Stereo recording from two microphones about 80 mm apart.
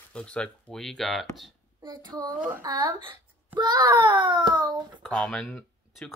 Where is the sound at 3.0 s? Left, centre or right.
Right.